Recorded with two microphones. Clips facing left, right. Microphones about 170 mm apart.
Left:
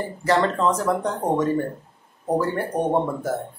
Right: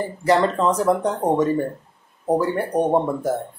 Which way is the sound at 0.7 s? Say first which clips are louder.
Right 3 dB; 15° right (ahead or behind).